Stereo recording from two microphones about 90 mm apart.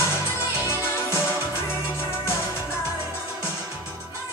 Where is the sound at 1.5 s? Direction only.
25° left (ahead or behind).